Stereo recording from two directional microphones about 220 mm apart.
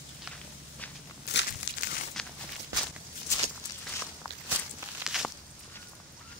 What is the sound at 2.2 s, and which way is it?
Walk, 5° left (ahead or behind).